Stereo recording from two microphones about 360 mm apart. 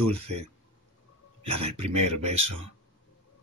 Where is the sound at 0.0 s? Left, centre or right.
Right.